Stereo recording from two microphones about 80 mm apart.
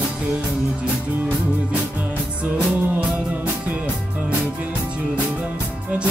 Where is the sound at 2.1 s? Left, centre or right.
Centre.